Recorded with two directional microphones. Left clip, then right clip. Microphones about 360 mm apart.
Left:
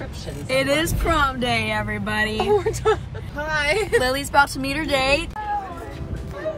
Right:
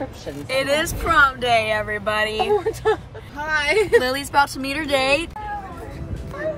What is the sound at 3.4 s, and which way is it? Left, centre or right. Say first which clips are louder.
Speech: right 2 dB; centre.